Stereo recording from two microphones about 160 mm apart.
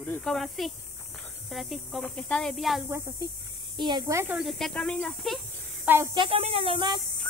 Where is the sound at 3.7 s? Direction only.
25° right (ahead or behind).